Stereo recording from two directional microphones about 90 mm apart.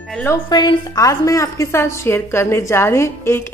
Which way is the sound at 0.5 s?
55° left (ahead or behind).